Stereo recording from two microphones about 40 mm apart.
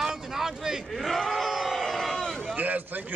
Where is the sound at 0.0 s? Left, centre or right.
Centre.